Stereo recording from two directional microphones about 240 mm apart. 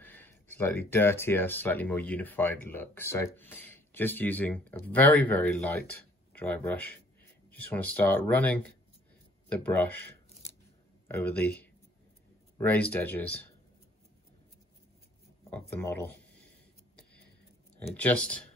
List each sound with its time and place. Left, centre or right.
0.0 s speech: centre
11.1 s speech: centre
12.5 s speech: centre
15.5 s speech: centre
17.7 s speech: centre